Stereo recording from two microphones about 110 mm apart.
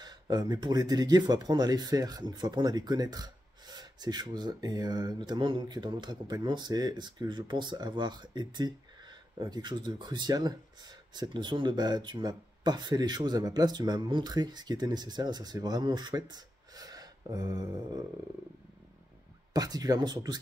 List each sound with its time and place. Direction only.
0.0 s speech: 40° right (ahead or behind)
19.5 s speech: 35° right (ahead or behind)